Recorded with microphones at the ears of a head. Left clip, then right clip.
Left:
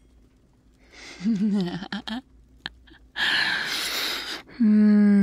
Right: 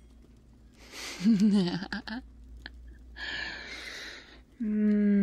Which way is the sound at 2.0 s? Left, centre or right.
Left.